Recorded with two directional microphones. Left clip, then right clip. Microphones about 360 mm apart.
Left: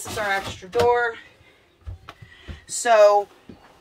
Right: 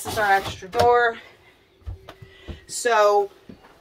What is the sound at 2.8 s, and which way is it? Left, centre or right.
Speech, centre.